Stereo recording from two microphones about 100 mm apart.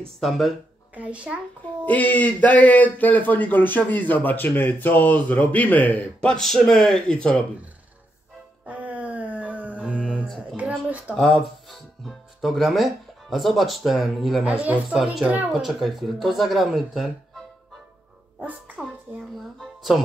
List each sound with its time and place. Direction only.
0.2 s speech: centre (ahead or behind)
0.9 s a child's voice: 15° right (ahead or behind)
1.9 s speech: 15° left (ahead or behind)
8.6 s a sound: 15° right (ahead or behind)
10.9 s speech: 15° right (ahead or behind)
11.7 s speech: centre (ahead or behind)
14.4 s speech: 15° right (ahead or behind)
15.5 s speech: centre (ahead or behind)
18.8 s music: centre (ahead or behind)